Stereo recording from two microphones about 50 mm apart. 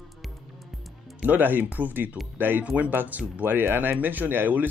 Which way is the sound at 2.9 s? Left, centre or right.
Right.